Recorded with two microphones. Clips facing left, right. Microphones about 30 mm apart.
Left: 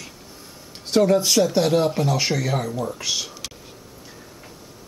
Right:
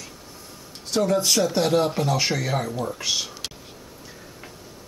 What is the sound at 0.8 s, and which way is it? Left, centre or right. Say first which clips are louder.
Speech: left 5 dB; centre.